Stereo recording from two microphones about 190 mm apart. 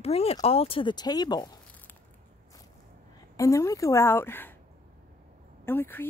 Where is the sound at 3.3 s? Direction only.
15° left (ahead or behind).